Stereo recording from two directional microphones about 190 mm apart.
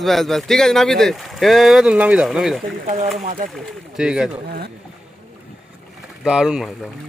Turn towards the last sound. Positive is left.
turn(degrees=-5)  # may be behind; listen again after turning